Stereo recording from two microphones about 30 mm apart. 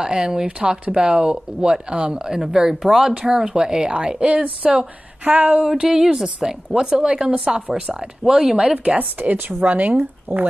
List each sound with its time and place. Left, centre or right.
0.0 s speech: right
2.2 s speech: right
4.2 s speech: right
5.7 s speech: centre
7.2 s speech: right
7.7 s speech: right
8.9 s speech: right